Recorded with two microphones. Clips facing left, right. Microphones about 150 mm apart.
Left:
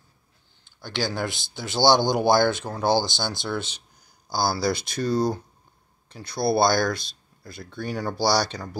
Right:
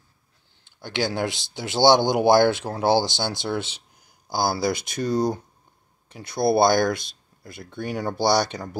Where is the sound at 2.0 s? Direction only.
60° right (ahead or behind).